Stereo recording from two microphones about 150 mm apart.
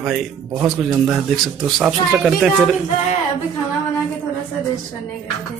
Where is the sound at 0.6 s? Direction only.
10° right (ahead or behind).